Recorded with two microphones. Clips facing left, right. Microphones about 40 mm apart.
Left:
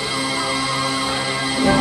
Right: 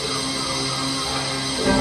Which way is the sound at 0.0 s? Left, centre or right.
Left.